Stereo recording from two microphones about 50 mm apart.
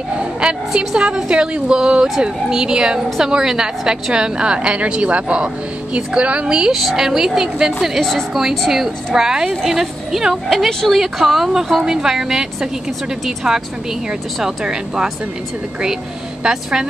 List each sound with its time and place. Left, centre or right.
0.2 s a woman's voice: centre
6.7 s a woman's voice: centre
8.0 s a woman's voice: centre
8.4 s a woman's voice: centre
16.4 s a woman's voice: centre